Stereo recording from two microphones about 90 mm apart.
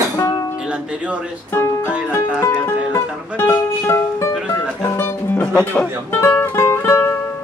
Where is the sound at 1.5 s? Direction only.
30° left (ahead or behind).